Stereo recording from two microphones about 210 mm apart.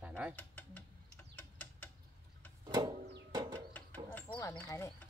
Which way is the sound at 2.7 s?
20° right (ahead or behind).